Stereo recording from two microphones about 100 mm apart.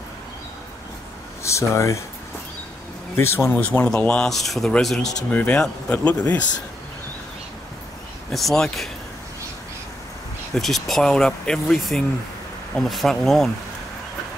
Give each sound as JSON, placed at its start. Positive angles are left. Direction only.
{"t": 1.4, "sound": "speech", "side_deg": 30}
{"t": 3.2, "sound": "speech", "side_deg": 25}
{"t": 8.3, "sound": "speech", "side_deg": 0}
{"t": 10.5, "sound": "speech", "side_deg": 5}